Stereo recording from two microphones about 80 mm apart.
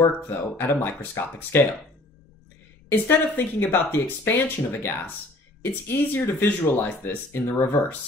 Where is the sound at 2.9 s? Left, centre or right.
Left.